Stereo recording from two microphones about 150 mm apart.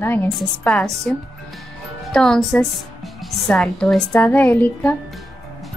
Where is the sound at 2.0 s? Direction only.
5° left (ahead or behind).